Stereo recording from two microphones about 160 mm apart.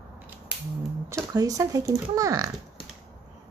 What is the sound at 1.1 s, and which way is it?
Speech, 20° right (ahead or behind).